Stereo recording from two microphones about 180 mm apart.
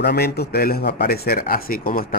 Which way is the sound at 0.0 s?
65° left (ahead or behind).